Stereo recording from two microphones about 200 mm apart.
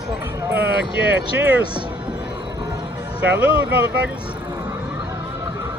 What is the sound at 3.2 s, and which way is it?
Speech, 10° right (ahead or behind).